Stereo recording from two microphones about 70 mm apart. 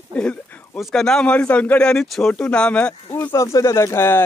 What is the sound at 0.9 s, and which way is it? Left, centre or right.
Speech, centre.